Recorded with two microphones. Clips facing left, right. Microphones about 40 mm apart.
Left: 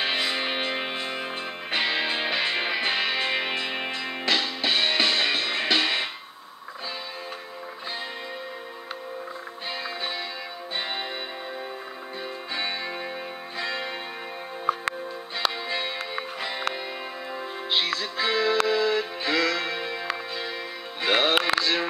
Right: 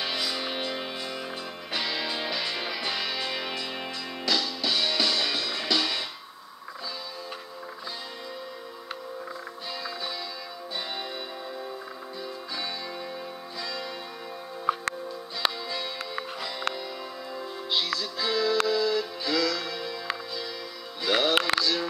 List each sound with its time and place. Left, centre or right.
0.0 s music: left
9.7 s music: left
12.5 s music: left
15.7 s music: left
21.0 s music: left
21.5 s a sound: left